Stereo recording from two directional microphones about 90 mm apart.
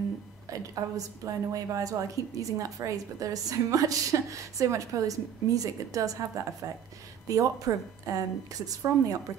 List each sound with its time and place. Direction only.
0.5 s a woman's voice: 40° right (ahead or behind)